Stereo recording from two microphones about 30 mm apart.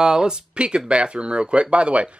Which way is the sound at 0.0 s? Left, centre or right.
Right.